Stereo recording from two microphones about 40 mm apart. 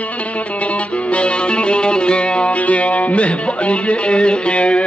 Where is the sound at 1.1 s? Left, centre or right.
Left.